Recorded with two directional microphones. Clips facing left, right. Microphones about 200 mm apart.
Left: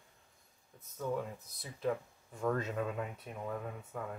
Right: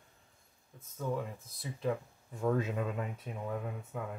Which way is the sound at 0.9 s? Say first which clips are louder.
Right 1 dB; centre (ahead or behind).